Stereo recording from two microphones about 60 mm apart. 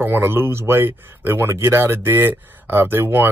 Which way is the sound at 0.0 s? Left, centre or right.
Right.